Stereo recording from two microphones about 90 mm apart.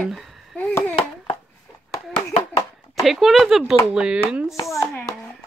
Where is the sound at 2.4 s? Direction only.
35° left (ahead or behind).